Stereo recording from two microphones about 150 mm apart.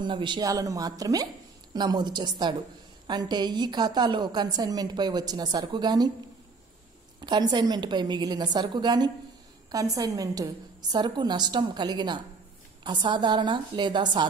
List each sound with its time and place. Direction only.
0.0 s a woman's voice: 30° right (ahead or behind)
7.2 s a woman's voice: 30° right (ahead or behind)